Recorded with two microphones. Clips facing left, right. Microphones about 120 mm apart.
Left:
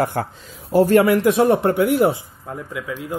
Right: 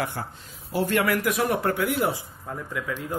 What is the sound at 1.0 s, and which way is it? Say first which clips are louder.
Speech: left 9 dB; 25° left (ahead or behind).